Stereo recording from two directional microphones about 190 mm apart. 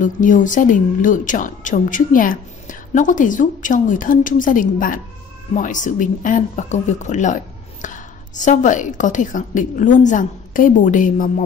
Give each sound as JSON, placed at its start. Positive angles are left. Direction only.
{"t": 0.0, "sound": "a woman's voice", "side_deg": 45}